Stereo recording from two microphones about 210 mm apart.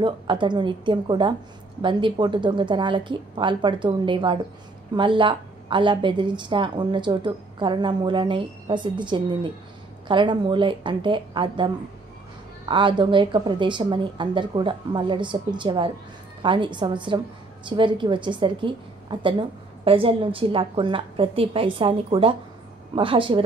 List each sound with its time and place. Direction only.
0.0 s a woman's voice: 20° right (ahead or behind)